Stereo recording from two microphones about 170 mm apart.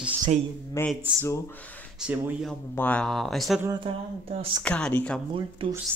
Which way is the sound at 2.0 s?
5° right (ahead or behind).